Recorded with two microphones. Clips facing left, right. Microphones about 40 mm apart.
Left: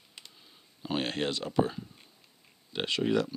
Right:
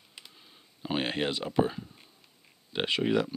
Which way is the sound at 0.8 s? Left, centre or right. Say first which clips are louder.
Right 1 dB; centre.